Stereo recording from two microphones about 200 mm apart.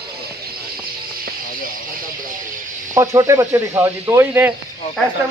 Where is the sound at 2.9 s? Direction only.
15° right (ahead or behind).